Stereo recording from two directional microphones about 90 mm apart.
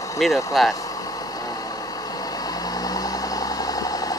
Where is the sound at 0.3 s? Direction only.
35° left (ahead or behind).